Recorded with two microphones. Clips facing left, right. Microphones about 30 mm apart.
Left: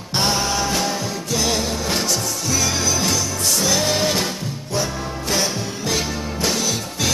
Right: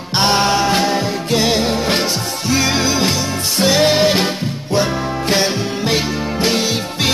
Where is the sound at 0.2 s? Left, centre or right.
Right.